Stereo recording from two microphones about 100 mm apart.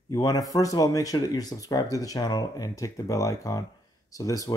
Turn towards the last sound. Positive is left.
turn(degrees=35)  # may be behind; listen again after turning